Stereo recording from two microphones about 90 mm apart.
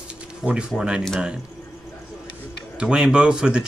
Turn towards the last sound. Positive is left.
turn(degrees=-10)  # may be behind; listen again after turning